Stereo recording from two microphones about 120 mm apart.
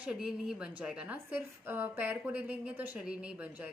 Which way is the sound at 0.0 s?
5° right (ahead or behind).